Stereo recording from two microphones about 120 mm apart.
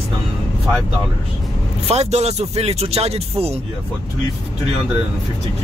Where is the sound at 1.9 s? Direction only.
60° right (ahead or behind).